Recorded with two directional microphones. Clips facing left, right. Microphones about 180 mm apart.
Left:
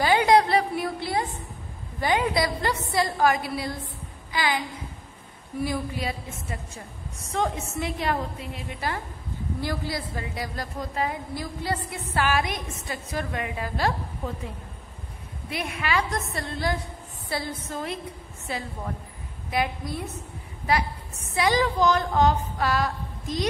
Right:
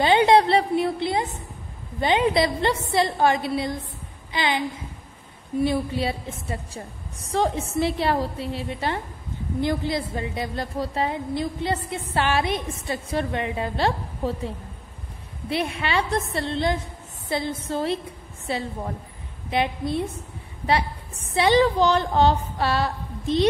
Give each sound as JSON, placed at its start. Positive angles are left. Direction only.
{"t": 0.0, "sound": "a sound", "side_deg": -25}
{"t": 2.0, "sound": "a woman's voice", "side_deg": -25}
{"t": 15.5, "sound": "a woman's voice", "side_deg": -30}